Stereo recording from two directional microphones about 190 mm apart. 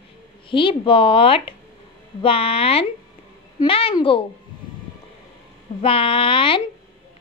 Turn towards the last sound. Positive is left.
turn(degrees=30)  # may be behind; listen again after turning